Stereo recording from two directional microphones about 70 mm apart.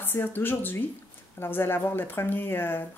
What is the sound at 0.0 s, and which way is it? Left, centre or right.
A woman's voice, left.